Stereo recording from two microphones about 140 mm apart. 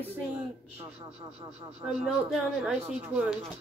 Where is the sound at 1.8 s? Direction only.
5° right (ahead or behind).